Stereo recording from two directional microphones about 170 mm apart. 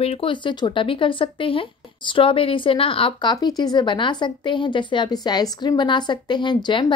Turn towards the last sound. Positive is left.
turn(degrees=25)  # may be behind; listen again after turning